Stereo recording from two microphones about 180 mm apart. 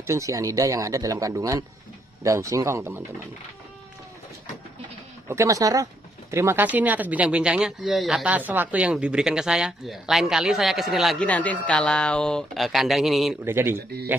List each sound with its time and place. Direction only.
0.0 s speech: 15° right (ahead or behind)
5.3 s speech: 15° right (ahead or behind); by 13.4 s centre (ahead or behind)
13.4 s speech: 15° right (ahead or behind)